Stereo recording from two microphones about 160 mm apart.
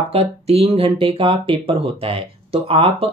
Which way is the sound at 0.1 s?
40° right (ahead or behind).